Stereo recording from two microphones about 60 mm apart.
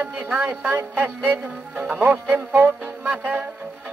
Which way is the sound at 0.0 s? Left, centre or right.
Right.